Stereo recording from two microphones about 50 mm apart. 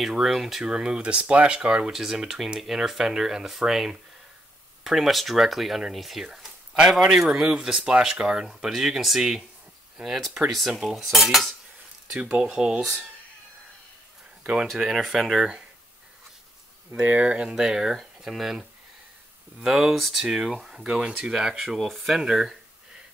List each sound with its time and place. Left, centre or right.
0.0 s speech: centre
1.9 s speech: centre
8.5 s speech: centre
12.4 s speech: centre
14.4 s speech: centre
14.9 s speech: centre
17.2 s speech: right
17.6 s speech: centre
20.2 s speech: centre